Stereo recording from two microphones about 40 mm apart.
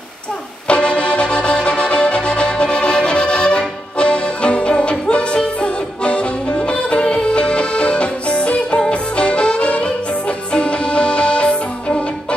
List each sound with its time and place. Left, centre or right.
0.7 s music: left